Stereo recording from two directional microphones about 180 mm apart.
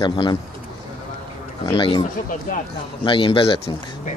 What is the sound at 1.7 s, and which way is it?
Speech, 25° left (ahead or behind).